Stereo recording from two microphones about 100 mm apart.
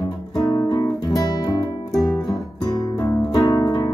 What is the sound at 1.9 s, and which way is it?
Music, centre (ahead or behind).